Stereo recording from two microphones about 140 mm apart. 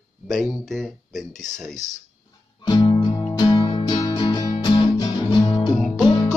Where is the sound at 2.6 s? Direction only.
30° left (ahead or behind).